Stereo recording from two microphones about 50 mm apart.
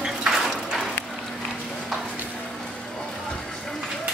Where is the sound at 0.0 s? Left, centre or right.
Centre.